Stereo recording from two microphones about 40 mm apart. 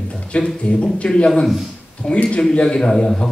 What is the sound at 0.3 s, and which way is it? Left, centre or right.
A man's voice, left.